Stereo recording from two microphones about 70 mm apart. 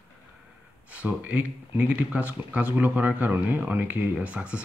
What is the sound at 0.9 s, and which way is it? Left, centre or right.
Speech, right.